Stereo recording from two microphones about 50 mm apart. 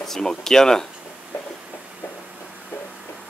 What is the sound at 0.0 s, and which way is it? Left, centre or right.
Speech, centre.